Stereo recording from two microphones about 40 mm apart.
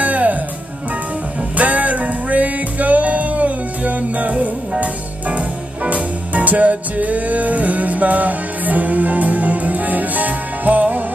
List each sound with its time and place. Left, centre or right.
0.0 s music: right
1.6 s music: right
5.9 s music: right